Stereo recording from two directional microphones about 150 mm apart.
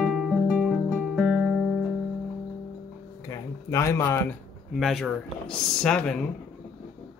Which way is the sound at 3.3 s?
20° left (ahead or behind).